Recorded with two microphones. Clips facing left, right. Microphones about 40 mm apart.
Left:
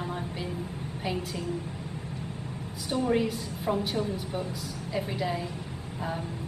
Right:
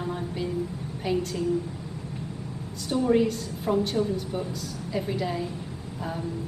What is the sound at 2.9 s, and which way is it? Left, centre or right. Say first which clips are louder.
Speech: right 4 dB; centre.